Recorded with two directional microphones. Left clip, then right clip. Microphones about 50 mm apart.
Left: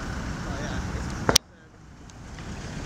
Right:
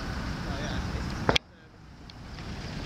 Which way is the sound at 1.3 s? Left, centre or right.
Left.